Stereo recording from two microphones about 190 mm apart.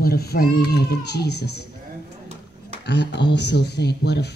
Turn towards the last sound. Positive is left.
turn(degrees=60)  # may be behind; listen again after turning